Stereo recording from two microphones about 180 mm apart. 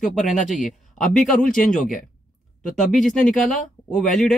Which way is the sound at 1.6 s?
45° left (ahead or behind).